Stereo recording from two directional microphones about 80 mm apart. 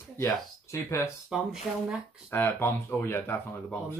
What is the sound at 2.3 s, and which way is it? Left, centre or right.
Speech, left.